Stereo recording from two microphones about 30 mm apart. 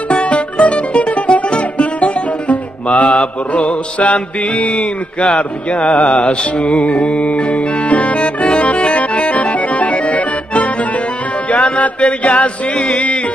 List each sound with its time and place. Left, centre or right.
0.1 s music: left
8.5 s accordion: left
11.4 s music: left
12.7 s music: left